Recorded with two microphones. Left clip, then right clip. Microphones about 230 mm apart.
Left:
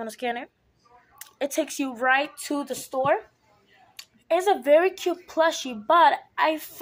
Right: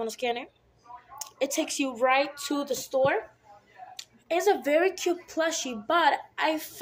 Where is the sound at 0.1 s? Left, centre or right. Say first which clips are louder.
Left 1 dB; left.